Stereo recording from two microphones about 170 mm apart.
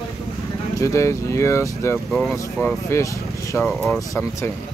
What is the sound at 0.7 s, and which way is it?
Speech, 15° left (ahead or behind).